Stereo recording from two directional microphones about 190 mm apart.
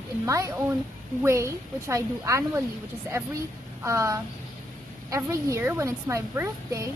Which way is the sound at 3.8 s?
15° right (ahead or behind).